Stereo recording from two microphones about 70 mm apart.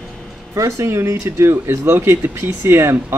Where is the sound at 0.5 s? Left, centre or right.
Right.